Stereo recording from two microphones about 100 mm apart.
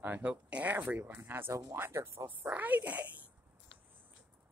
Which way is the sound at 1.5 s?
35° right (ahead or behind).